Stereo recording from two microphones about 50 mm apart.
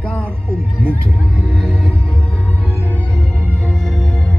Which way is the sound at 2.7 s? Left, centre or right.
Right.